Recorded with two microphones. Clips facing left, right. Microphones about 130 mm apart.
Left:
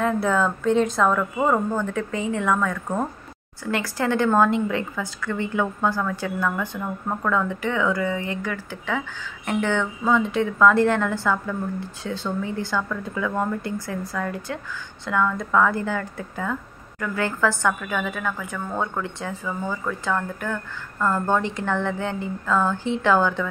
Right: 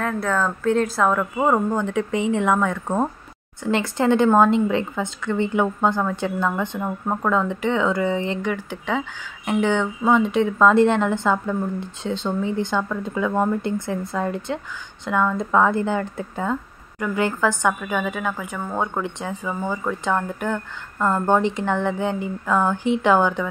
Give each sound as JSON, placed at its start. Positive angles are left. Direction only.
{"t": 0.0, "sound": "a woman's voice", "side_deg": 5}